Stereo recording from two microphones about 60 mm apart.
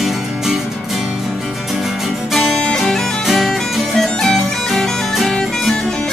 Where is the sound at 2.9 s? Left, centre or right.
Centre.